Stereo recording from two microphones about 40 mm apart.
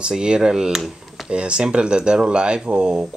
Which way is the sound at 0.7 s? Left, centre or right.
Centre.